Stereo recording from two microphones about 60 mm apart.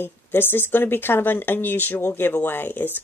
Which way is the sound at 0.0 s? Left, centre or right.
Left.